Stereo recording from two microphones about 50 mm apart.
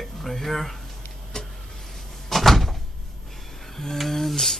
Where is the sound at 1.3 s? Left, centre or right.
Centre.